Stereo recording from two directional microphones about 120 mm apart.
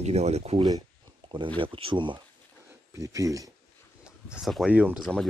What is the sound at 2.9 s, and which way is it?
Speech, 25° right (ahead or behind).